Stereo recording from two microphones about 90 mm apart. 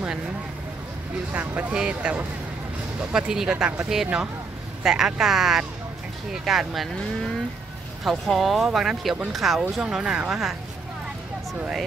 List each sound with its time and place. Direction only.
1.3 s speech: 20° right (ahead or behind); by 6.9 s centre (ahead or behind)
8.0 s speech: centre (ahead or behind)